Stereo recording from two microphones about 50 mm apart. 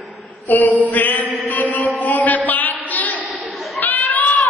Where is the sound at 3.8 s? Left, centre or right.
Left.